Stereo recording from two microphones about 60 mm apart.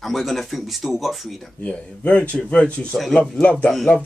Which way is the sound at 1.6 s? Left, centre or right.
Left.